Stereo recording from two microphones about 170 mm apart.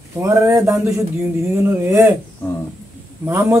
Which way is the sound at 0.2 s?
15° right (ahead or behind).